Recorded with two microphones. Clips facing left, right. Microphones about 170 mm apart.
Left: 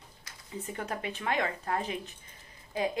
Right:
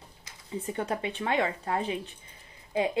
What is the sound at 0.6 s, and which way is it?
Speech, 30° right (ahead or behind).